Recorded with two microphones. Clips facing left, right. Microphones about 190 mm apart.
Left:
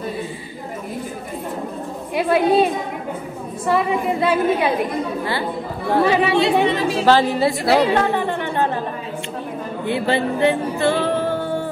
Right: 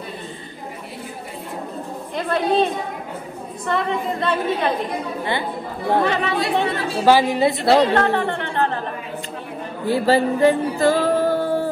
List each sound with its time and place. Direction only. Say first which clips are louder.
2.1 s a woman's voice: left 4 dB; 10° left (ahead or behind)
6.0 s a woman's voice: left 5 dB; 10° left (ahead or behind)
7.1 s a woman's voice: right 1 dB; 10° right (ahead or behind)
7.6 s a woman's voice: right 1 dB; 5° left (ahead or behind)
9.8 s music: right 3 dB; 35° right (ahead or behind)